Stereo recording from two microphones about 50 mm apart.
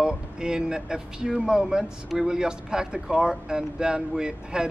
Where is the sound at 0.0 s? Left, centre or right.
Centre.